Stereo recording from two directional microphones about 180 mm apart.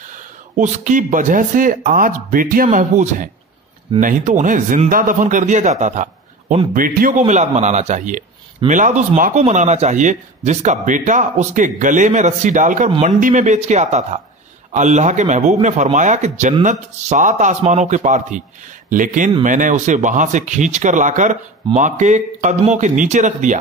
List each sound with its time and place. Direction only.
0.6 s speech: 45° right (ahead or behind)